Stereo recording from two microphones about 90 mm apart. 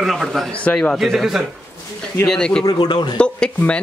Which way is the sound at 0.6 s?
10° left (ahead or behind).